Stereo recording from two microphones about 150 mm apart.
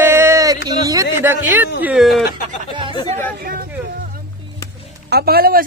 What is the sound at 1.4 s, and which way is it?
Speech, 10° right (ahead or behind).